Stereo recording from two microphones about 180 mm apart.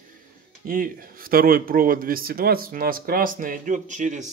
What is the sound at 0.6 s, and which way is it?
Speech, 50° right (ahead or behind).